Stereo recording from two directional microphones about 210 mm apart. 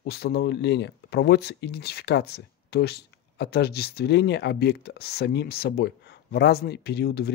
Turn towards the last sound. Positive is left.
turn(degrees=50)  # may be behind; listen again after turning